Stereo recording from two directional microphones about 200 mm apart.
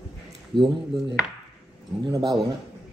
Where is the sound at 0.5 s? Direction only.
25° left (ahead or behind).